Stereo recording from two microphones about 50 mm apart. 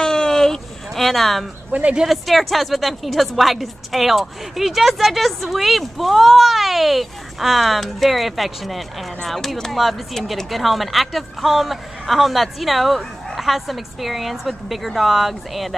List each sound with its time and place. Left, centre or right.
0.0 s a sound: centre
1.7 s speech: right
2.0 s a woman's voice: centre